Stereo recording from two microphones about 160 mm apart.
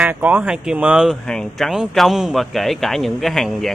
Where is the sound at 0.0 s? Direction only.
10° right (ahead or behind).